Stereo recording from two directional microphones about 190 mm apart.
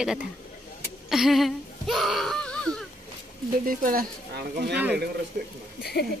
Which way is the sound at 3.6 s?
45° right (ahead or behind).